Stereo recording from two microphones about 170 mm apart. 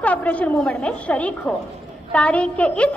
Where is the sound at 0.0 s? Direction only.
10° left (ahead or behind).